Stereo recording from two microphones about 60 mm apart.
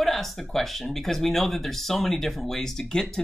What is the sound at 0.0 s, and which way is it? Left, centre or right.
Speech, centre.